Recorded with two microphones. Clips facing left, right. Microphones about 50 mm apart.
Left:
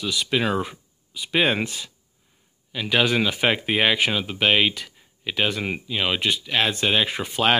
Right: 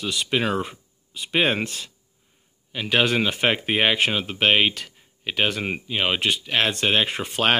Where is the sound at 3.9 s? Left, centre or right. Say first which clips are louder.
Even; right.